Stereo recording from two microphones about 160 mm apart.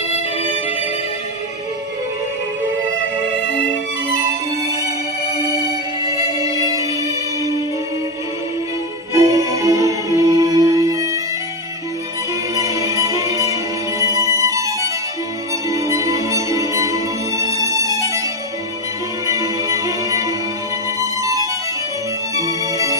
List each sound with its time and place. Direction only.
6.4 s music: 20° right (ahead or behind)
9.1 s music: 20° right (ahead or behind)
12.5 s music: 20° right (ahead or behind)
19.2 s music: 20° right (ahead or behind)